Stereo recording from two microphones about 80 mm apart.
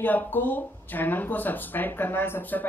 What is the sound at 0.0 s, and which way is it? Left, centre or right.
Speech, left.